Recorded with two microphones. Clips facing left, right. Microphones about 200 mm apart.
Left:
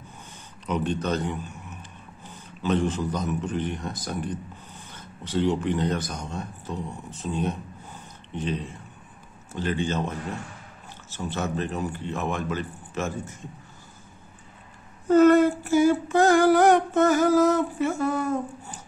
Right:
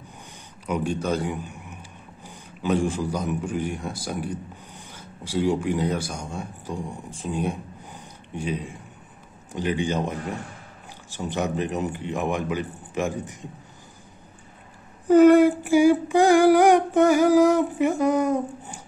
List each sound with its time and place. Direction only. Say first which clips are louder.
0.7 s a man's voice: right 1 dB; 10° right (ahead or behind)
9.5 s female singing: right 2 dB; 15° right (ahead or behind)
15.0 s female singing: right 3 dB; 15° right (ahead or behind)